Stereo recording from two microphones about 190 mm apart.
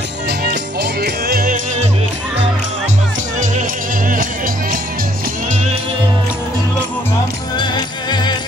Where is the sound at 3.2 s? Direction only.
40° right (ahead or behind).